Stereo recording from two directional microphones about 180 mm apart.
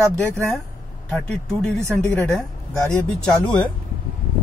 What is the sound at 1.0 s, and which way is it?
Speech, centre (ahead or behind).